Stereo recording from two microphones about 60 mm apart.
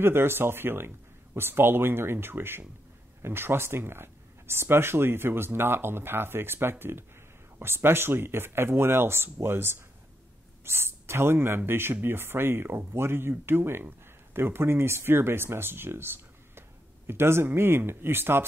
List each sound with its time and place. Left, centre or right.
0.0 s speech: right